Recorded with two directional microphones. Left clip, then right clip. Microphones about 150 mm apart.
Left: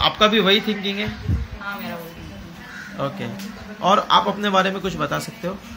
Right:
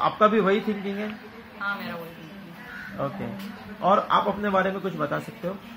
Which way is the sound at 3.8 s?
20° left (ahead or behind).